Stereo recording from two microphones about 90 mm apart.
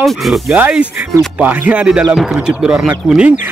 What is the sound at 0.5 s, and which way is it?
Speech, 15° right (ahead or behind).